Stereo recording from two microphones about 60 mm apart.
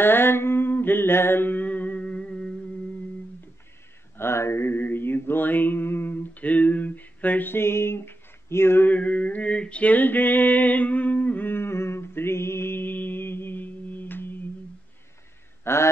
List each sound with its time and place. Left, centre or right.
0.0 s mantra: left; by 2.5 s centre
4.2 s mantra: left
8.9 s a sound: left
15.6 s speech: left